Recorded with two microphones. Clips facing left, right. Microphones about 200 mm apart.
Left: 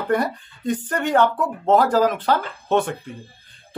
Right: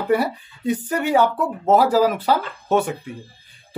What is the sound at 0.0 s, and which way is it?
Speech, 10° right (ahead or behind).